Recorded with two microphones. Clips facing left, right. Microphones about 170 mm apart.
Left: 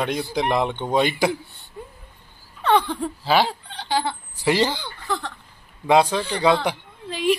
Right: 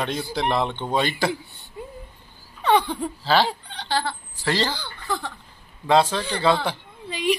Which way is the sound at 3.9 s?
15° left (ahead or behind).